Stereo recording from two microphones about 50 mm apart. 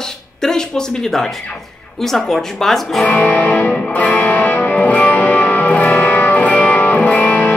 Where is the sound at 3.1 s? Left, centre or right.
Left.